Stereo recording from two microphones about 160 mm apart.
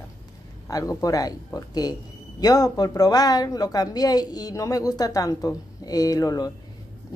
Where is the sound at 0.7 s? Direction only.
20° left (ahead or behind).